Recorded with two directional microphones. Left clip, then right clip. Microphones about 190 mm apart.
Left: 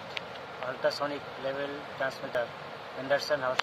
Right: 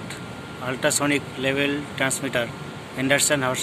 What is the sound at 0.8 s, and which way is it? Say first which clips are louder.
Speech: right 8 dB; 40° right (ahead or behind).